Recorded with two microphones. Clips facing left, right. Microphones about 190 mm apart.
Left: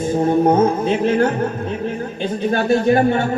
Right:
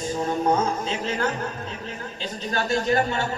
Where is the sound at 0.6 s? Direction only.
55° left (ahead or behind).